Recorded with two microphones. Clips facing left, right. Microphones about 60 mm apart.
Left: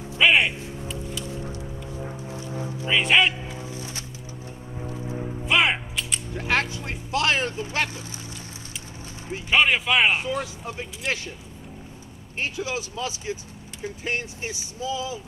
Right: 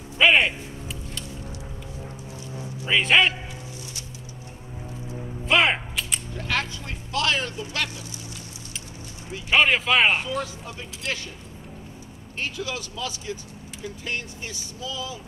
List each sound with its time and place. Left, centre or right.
0.2 s a sound: centre
2.3 s music: left
2.9 s speech: centre
5.0 s music: left
5.4 s a sound: centre
6.3 s speech: left
9.5 s speech: centre
10.2 s speech: left
12.4 s speech: left